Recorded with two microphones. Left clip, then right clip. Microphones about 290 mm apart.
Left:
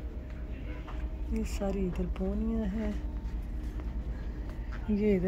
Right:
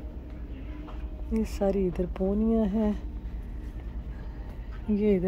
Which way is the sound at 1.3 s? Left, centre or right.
Centre.